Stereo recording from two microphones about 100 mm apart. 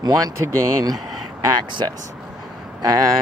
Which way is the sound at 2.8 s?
35° right (ahead or behind).